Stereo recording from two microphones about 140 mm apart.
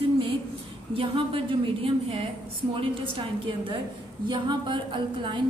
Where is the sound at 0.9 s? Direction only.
40° right (ahead or behind).